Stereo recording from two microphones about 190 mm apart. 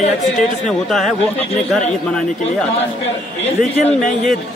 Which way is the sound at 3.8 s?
40° left (ahead or behind).